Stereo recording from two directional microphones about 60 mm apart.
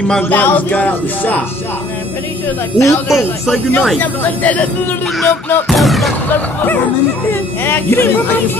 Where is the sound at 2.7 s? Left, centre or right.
Left.